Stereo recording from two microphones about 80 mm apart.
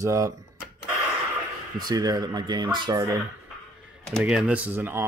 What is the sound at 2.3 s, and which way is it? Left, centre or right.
Speech, right.